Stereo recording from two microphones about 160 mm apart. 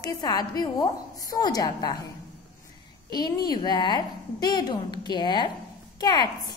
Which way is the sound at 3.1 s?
25° left (ahead or behind).